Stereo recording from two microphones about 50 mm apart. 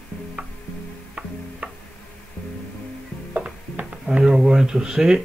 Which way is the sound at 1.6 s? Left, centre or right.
Right.